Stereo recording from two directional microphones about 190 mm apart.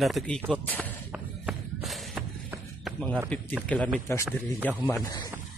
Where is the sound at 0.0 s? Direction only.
Centre (ahead or behind).